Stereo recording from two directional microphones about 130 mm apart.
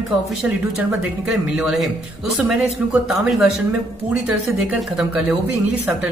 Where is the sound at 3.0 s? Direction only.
5° right (ahead or behind).